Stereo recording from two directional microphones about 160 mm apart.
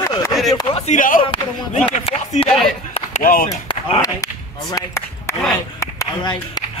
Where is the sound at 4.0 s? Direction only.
20° left (ahead or behind).